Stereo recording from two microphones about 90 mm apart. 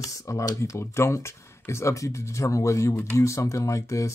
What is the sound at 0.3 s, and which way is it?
Speech, 35° left (ahead or behind).